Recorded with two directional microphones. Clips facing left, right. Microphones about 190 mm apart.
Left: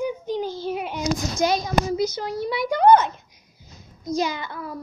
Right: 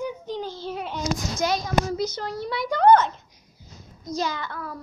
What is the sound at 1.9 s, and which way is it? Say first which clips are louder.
A child's voice: left 3 dB; 10° left (ahead or behind).